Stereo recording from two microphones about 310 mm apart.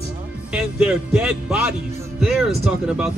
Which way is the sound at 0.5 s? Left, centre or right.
Centre.